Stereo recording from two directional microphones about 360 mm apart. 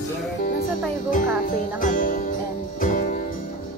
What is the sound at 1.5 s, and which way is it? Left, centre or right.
Speech, left.